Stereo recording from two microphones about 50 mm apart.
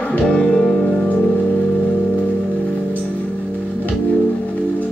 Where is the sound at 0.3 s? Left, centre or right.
Centre.